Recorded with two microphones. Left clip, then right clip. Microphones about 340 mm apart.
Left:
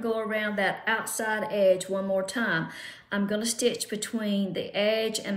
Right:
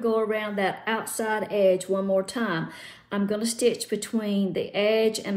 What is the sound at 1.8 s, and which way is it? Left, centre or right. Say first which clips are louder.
Speech: right 3 dB; right.